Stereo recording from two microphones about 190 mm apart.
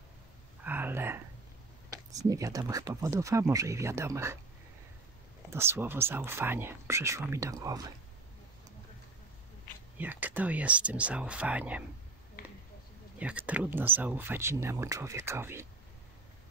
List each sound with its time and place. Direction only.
0.7 s whispering: 10° right (ahead or behind)
2.0 s speech: 15° right (ahead or behind)
5.5 s speech: 15° right (ahead or behind)
9.9 s speech: 10° right (ahead or behind)
12.4 s a sound: 50° left (ahead or behind)
13.2 s speech: 5° right (ahead or behind)